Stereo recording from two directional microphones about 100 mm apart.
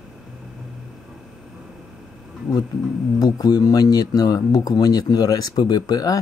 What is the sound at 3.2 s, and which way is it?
Speech, 40° left (ahead or behind).